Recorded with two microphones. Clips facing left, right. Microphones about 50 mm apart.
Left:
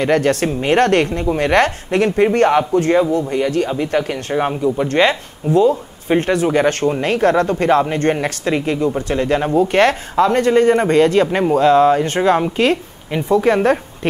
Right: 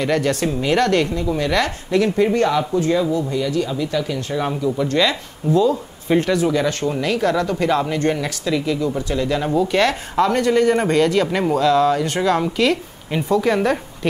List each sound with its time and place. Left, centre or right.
0.0 s a woman's voice: left